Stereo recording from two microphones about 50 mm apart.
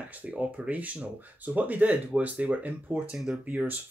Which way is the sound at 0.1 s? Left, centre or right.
Right.